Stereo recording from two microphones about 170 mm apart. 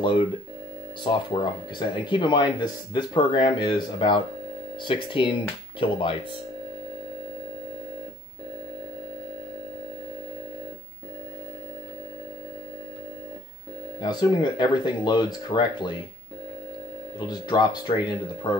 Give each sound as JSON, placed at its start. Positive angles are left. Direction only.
{"t": 1.0, "sound": "speech", "side_deg": 30}
{"t": 14.0, "sound": "speech", "side_deg": 25}
{"t": 17.3, "sound": "speech", "side_deg": 25}